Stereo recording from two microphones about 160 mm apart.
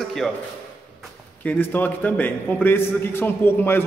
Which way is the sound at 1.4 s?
10° left (ahead or behind).